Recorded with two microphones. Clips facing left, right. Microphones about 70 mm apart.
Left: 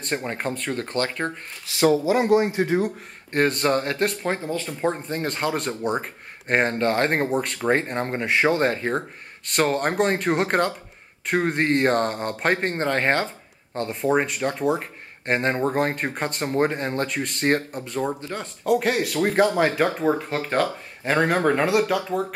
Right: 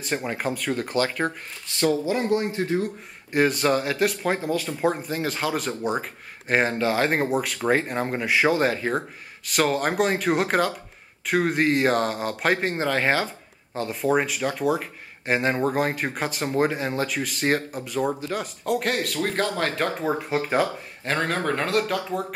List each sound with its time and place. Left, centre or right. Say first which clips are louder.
0.1 s speech: even; centre
1.8 s speech: left 4 dB; centre
3.3 s speech: even; centre
18.6 s speech: left 5 dB; centre
19.2 s speech: left 8 dB; centre
20.0 s speech: left 2 dB; centre
21.0 s speech: left 5 dB; centre